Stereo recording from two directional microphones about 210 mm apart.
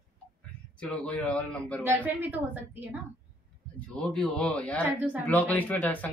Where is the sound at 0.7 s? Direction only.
5° left (ahead or behind).